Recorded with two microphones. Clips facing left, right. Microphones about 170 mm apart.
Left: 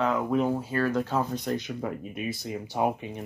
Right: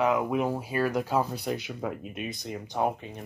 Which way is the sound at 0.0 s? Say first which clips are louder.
Even; 10° right (ahead or behind).